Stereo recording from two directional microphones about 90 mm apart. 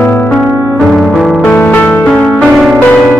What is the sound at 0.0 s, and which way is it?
Music, 20° left (ahead or behind).